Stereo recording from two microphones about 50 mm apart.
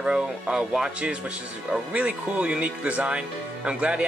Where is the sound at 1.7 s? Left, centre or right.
Right.